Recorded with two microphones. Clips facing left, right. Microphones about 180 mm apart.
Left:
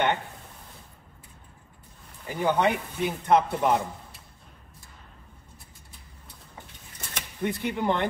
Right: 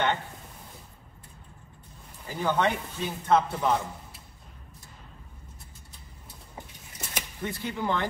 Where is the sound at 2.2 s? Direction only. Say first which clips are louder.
Left 2 dB; 20° left (ahead or behind).